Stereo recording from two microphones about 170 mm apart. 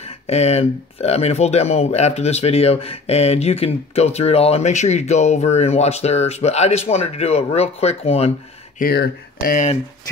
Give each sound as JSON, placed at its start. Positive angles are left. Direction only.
{"t": 0.0, "sound": "speech", "side_deg": 35}
{"t": 8.7, "sound": "speech", "side_deg": 70}